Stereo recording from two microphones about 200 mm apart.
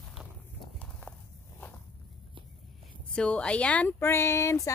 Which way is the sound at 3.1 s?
5° left (ahead or behind).